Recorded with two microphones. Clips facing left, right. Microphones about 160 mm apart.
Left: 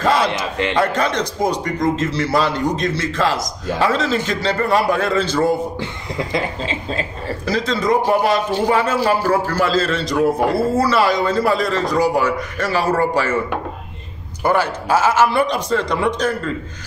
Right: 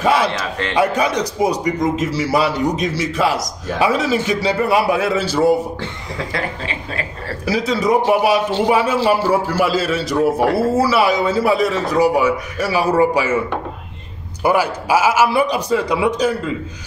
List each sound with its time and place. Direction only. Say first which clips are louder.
0.0 s a man's voice: right 1 dB; 10° right (ahead or behind)
0.3 s a man's voice: left 2 dB; 15° left (ahead or behind)
0.7 s a man's voice: right 3 dB; 10° right (ahead or behind)
5.8 s speech: left 2 dB; 20° left (ahead or behind)
7.4 s a man's voice: right 1 dB; 10° right (ahead or behind)
14.4 s a man's voice: right 1 dB; 10° right (ahead or behind)